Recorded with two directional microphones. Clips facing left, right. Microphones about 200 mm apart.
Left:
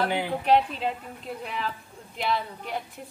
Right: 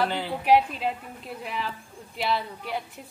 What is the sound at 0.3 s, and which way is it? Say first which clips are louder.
Speech: right 2 dB; 10° right (ahead or behind).